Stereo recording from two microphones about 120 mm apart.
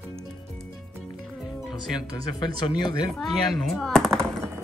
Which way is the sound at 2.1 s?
40° left (ahead or behind).